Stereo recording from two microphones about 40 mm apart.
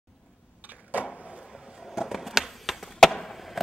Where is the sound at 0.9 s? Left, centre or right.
Right.